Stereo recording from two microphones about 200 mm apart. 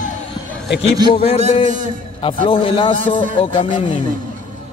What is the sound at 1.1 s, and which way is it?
A man's voice, 30° left (ahead or behind).